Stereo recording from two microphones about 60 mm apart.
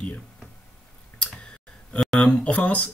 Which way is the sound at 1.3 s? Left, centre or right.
Centre.